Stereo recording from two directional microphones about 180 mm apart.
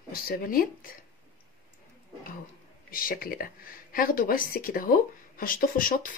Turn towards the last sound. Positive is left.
turn(degrees=50)  # may be behind; listen again after turning